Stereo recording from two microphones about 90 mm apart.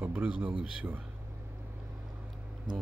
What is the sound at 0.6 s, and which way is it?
Speech, 20° right (ahead or behind).